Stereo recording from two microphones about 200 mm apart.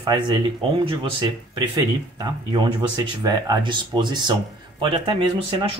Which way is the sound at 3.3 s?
20° right (ahead or behind).